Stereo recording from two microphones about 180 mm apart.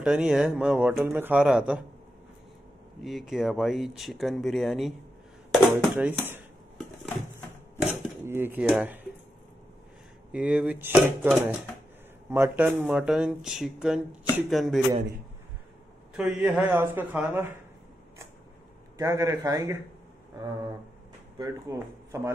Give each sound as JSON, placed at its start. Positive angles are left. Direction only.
{"t": 0.0, "sound": "speech", "side_deg": -5}
{"t": 3.0, "sound": "speech", "side_deg": 0}
{"t": 7.8, "sound": "dishes", "side_deg": -10}
{"t": 8.6, "sound": "a man's voice", "side_deg": -5}
{"t": 10.3, "sound": "a man's voice", "side_deg": -10}
{"t": 12.3, "sound": "a man's voice", "side_deg": -15}
{"t": 16.2, "sound": "a man's voice", "side_deg": -5}
{"t": 18.9, "sound": "a man's voice", "side_deg": -15}
{"t": 21.4, "sound": "speech", "side_deg": -20}